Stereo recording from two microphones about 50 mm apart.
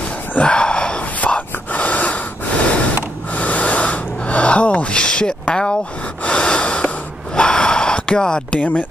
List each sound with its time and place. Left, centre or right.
0.3 s a sound: left
1.2 s gasp: left
3.3 s gasp: left
5.5 s speech: centre
6.2 s gasp: centre
7.3 s a sound: centre
8.5 s speech: left